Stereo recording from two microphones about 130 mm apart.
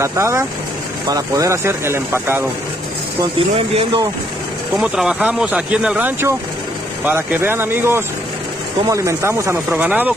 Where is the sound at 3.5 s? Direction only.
50° right (ahead or behind).